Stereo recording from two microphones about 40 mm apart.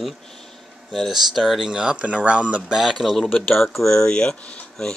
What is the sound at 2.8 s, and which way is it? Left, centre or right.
Speech, centre.